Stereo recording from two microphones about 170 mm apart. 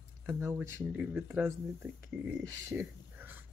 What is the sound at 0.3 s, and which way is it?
Speech, 15° right (ahead or behind).